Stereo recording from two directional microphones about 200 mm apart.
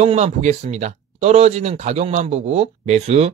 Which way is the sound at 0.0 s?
35° right (ahead or behind).